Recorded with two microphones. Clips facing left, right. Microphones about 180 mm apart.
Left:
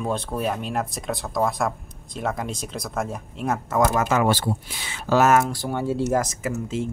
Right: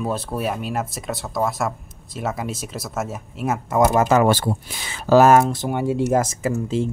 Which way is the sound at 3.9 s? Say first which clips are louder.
Right 5 dB; 25° right (ahead or behind).